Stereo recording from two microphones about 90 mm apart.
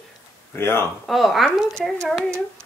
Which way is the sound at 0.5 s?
30° left (ahead or behind).